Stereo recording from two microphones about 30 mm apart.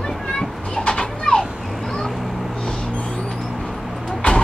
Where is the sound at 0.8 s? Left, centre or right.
Left.